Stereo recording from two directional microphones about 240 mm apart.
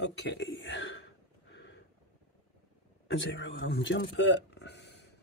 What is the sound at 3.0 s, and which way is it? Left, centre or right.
Speech, left.